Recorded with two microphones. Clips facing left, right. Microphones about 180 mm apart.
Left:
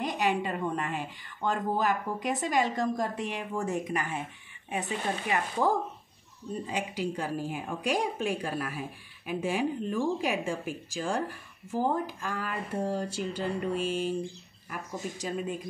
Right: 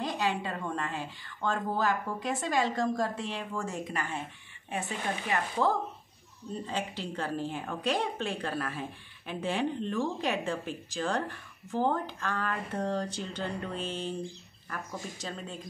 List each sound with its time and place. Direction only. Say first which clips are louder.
0.0 s a woman's voice: left 2 dB; 20° left (ahead or behind)